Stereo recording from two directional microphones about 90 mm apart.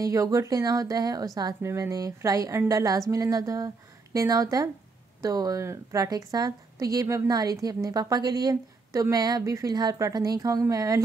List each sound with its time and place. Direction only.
0.0 s a woman's voice: 40° right (ahead or behind)
6.0 s a woman's voice: 45° right (ahead or behind)